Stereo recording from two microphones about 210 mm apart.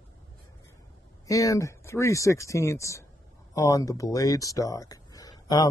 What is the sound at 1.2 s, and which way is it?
Speech, 15° left (ahead or behind).